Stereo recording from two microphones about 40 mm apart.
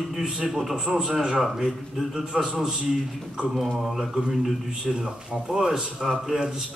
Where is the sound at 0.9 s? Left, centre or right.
Centre.